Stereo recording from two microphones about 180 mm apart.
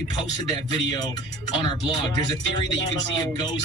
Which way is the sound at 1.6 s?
25° left (ahead or behind).